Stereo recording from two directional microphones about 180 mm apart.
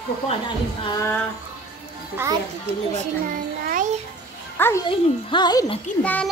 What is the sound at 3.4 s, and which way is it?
Music, 50° right (ahead or behind).